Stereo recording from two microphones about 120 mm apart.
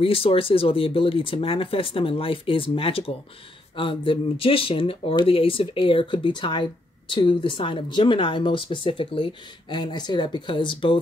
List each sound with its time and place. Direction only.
0.0 s speech: 50° left (ahead or behind)